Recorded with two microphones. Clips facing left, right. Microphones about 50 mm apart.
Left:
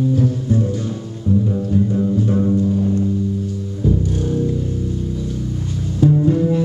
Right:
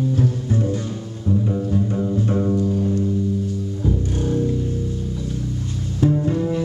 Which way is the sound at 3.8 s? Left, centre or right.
Centre.